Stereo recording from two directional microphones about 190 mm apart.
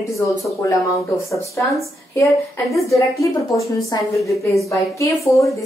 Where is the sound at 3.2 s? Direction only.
15° left (ahead or behind).